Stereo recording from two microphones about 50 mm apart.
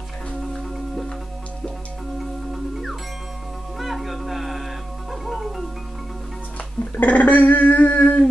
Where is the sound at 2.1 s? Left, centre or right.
Centre.